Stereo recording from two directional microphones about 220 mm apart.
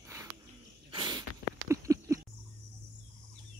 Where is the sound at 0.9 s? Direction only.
20° right (ahead or behind).